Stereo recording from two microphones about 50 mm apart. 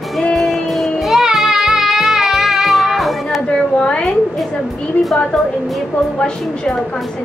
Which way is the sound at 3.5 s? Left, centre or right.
Centre.